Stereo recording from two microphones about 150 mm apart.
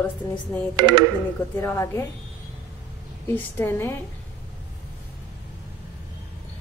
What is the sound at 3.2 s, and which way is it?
Speech, 15° left (ahead or behind).